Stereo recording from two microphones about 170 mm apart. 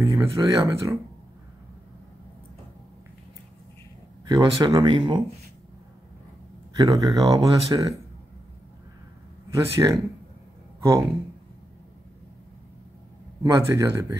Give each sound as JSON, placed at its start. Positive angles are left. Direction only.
{"t": 0.0, "sound": "speech", "side_deg": -20}
{"t": 4.3, "sound": "speech", "side_deg": -20}
{"t": 6.8, "sound": "speech", "side_deg": -20}
{"t": 9.5, "sound": "speech", "side_deg": -20}
{"t": 13.4, "sound": "speech", "side_deg": -15}